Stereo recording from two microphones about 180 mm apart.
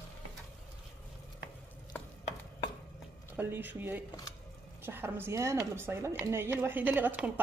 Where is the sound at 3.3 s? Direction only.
10° right (ahead or behind).